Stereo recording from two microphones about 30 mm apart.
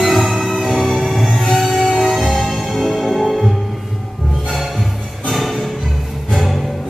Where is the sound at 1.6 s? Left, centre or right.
Centre.